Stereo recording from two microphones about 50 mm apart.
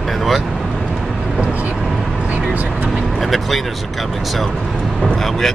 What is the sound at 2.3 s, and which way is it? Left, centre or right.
Speech, right.